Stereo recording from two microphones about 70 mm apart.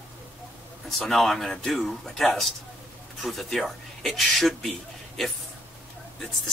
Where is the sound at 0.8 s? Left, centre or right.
Centre.